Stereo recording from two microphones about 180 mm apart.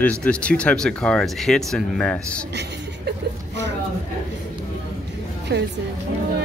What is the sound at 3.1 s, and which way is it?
Speech, 70° right (ahead or behind).